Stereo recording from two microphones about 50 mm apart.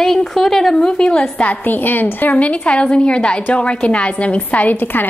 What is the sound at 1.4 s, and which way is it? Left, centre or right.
A woman's voice, left.